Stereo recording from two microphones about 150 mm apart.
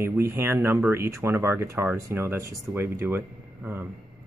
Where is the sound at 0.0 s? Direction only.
15° right (ahead or behind).